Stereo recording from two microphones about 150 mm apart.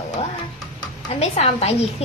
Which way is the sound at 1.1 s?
45° left (ahead or behind).